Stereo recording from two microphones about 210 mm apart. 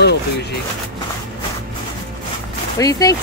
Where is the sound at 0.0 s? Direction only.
55° left (ahead or behind).